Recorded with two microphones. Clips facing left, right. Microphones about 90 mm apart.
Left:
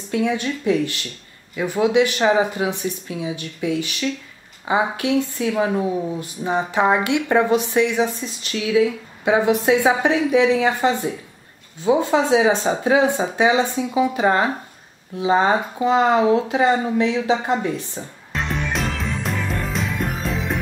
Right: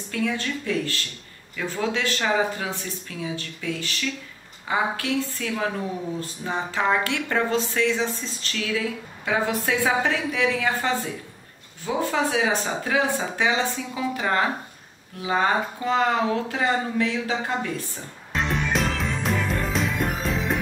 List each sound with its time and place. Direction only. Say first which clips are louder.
0.1 s speech: left 5 dB; 20° left (ahead or behind)
18.3 s music: even; centre (ahead or behind)